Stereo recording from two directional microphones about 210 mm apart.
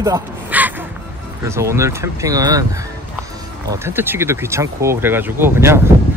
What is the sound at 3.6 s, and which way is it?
Speech, 10° right (ahead or behind).